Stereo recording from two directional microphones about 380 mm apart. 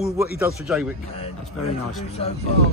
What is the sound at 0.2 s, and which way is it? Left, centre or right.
Speech, centre.